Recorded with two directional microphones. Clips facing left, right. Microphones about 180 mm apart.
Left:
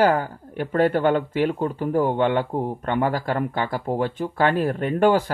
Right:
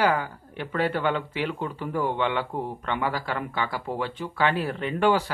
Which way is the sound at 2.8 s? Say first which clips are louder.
Left 6 dB; 45° left (ahead or behind).